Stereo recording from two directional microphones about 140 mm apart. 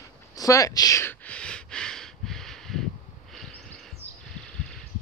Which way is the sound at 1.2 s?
10° left (ahead or behind).